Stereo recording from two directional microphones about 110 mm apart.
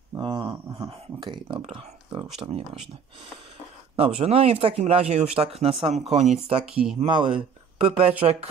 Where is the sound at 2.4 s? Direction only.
40° right (ahead or behind).